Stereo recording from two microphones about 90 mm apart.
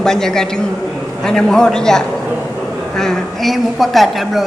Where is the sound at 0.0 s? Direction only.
5° left (ahead or behind).